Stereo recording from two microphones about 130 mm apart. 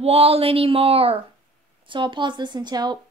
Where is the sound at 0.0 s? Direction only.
50° right (ahead or behind); by 3.0 s 35° right (ahead or behind).